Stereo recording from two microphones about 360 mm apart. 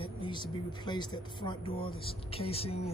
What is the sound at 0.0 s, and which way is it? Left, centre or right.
Speech, centre.